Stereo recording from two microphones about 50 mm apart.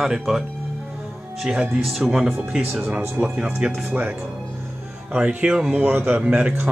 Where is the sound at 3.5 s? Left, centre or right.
Centre.